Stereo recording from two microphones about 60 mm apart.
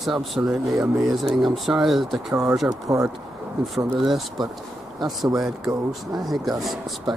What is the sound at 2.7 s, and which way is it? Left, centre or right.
Speech, right.